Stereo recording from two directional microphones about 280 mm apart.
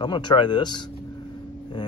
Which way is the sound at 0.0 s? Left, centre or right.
Centre.